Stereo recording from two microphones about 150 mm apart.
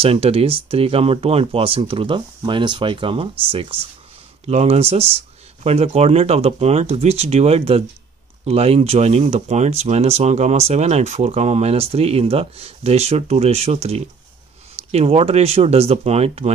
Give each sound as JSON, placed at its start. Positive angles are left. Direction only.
{"t": 0.0, "sound": "speech", "side_deg": -40}